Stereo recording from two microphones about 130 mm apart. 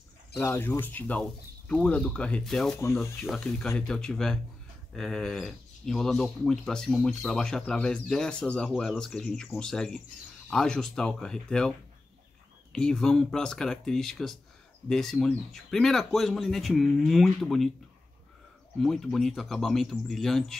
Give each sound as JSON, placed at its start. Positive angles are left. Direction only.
{"t": 0.4, "sound": "speech", "side_deg": 15}
{"t": 12.7, "sound": "speech", "side_deg": 5}
{"t": 18.8, "sound": "speech", "side_deg": 0}